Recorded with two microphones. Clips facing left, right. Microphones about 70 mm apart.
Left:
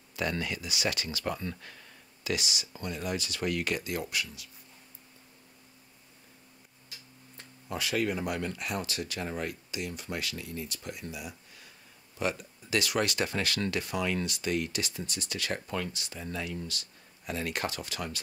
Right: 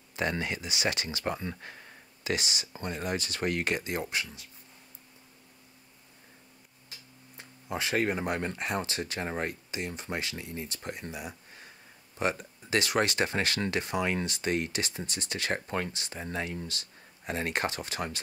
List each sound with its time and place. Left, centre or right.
0.1 s speech: right
7.3 s a sound: centre
7.8 s speech: right